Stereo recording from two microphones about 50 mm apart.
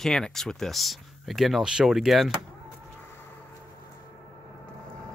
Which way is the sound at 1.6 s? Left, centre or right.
Centre.